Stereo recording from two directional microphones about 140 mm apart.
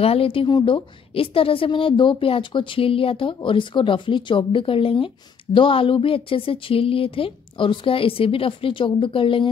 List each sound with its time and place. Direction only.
0.0 s a woman's voice: 45° left (ahead or behind)